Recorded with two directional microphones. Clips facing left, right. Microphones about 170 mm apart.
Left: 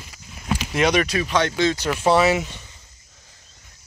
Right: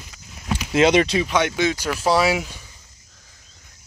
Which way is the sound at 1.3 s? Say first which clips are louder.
Even; 15° right (ahead or behind).